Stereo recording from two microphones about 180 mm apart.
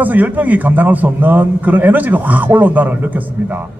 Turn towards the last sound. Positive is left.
turn(degrees=-10)  # may be behind; listen again after turning